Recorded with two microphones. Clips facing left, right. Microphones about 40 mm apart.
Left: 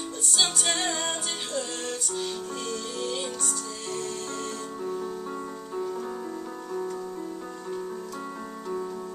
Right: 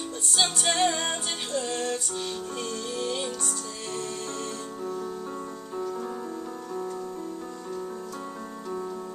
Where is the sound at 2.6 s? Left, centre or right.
Centre.